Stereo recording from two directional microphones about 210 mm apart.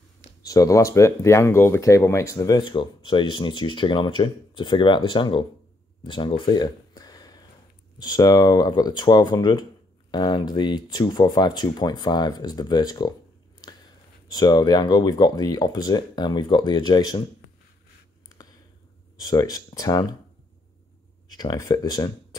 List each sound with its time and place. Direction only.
0.4 s speech: 15° left (ahead or behind)
6.0 s a sound: 25° left (ahead or behind)
8.0 s speech: 20° left (ahead or behind)
14.3 s speech: 20° left (ahead or behind)
18.4 s a sound: 15° left (ahead or behind)
19.1 s speech: 15° left (ahead or behind)
21.3 s speech: 20° left (ahead or behind)